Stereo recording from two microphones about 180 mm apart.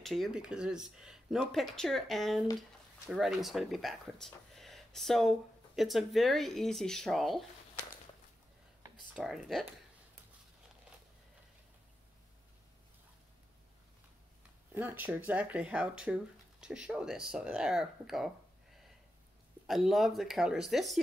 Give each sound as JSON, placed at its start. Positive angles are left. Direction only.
{"t": 0.0, "sound": "speech", "side_deg": 0}
{"t": 9.1, "sound": "speech", "side_deg": 0}
{"t": 14.7, "sound": "speech", "side_deg": -10}
{"t": 19.6, "sound": "speech", "side_deg": 0}